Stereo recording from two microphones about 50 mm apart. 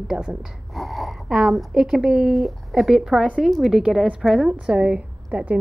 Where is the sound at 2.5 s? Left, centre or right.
Centre.